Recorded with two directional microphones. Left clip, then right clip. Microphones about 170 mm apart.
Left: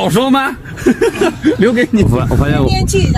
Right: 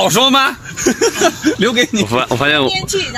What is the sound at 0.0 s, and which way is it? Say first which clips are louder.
Speech: right 2 dB; 20° right (ahead or behind).